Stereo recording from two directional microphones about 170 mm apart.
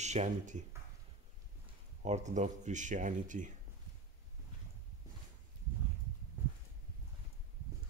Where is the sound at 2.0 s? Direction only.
45° right (ahead or behind).